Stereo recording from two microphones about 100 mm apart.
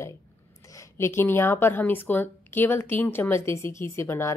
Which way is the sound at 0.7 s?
30° left (ahead or behind).